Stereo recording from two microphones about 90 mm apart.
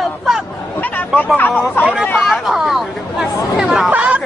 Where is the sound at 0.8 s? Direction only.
20° left (ahead or behind).